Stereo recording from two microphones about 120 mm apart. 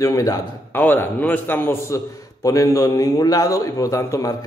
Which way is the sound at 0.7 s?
15° left (ahead or behind).